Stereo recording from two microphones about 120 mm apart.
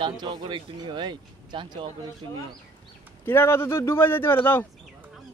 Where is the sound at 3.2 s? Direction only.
20° left (ahead or behind).